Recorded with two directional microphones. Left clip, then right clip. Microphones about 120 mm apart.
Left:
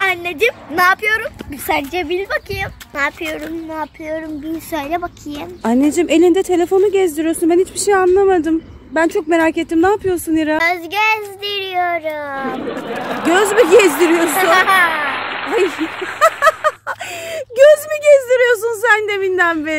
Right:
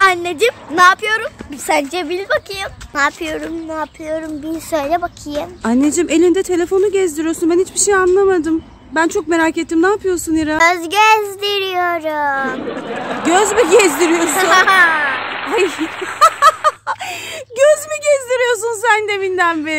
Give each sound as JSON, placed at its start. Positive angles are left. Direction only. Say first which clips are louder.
{"t": 0.0, "sound": "a sound", "louder": "right 3 dB", "side_deg": -35}
{"t": 0.7, "sound": "speech", "louder": "right 3 dB", "side_deg": -5}
{"t": 2.2, "sound": "speech", "louder": "right 2 dB", "side_deg": -15}
{"t": 5.6, "sound": "speech", "louder": "left 1 dB", "side_deg": 0}
{"t": 9.8, "sound": "speech", "louder": "even", "side_deg": -20}
{"t": 10.1, "sound": "speech", "louder": "left 1 dB", "side_deg": -10}
{"t": 10.6, "sound": "child singing", "louder": "right 4 dB", "side_deg": -65}
{"t": 12.4, "sound": "speech", "louder": "right 1 dB", "side_deg": 0}
{"t": 14.5, "sound": "speech", "louder": "right 2 dB", "side_deg": -30}
{"t": 14.9, "sound": "a sound", "louder": "right 3 dB", "side_deg": 0}
{"t": 17.6, "sound": "speech", "louder": "left 3 dB", "side_deg": 0}